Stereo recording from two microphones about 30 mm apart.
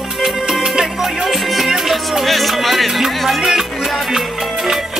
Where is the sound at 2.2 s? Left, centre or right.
Centre.